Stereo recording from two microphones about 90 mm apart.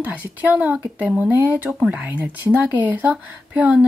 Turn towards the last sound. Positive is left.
turn(degrees=-15)  # may be behind; listen again after turning